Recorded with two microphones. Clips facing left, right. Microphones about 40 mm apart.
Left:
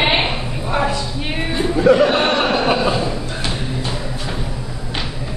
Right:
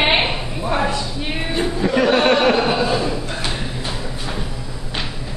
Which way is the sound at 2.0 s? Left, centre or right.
Centre.